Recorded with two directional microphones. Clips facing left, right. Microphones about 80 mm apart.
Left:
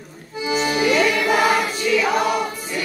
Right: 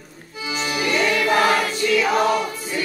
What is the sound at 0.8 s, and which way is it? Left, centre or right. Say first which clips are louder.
Choir: even; centre.